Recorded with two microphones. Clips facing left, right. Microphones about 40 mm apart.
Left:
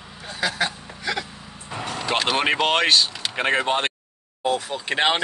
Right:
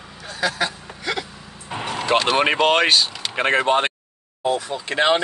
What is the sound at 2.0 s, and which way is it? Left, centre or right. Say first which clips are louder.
Speech: right 3 dB; centre.